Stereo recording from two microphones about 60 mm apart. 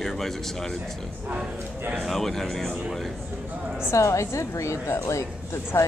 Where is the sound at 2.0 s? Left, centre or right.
Centre.